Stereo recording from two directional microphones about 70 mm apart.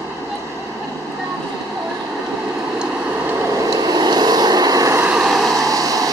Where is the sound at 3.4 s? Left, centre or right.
Right.